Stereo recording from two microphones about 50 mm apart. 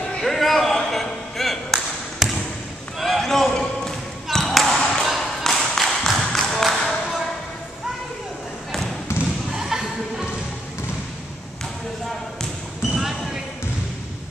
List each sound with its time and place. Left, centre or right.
0.2 s a sound: centre
0.7 s thump: centre
3.0 s basketball bounce: centre
5.0 s a sound: centre
9.1 s basketball bounce: left
9.5 s thump: centre
12.9 s basketball bounce: centre